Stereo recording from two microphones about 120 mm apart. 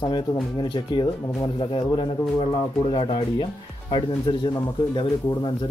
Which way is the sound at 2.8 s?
50° left (ahead or behind).